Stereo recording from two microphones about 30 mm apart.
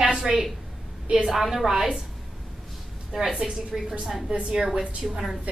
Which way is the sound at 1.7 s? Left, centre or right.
Centre.